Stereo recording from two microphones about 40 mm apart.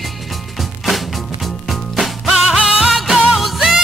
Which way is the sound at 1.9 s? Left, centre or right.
Centre.